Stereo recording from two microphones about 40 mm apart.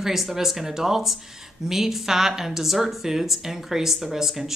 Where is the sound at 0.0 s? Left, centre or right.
Centre.